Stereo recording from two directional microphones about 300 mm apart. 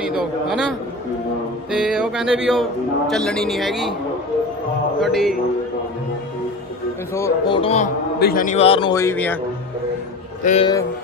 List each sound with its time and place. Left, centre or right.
0.0 s a man's voice: centre
1.7 s music: centre
3.1 s a man's voice: centre
5.0 s a man's voice: centre
7.2 s a man's voice: centre
10.4 s a man's voice: centre